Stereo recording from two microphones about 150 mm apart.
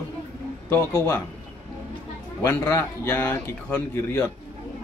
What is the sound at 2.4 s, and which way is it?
Speech, 15° left (ahead or behind).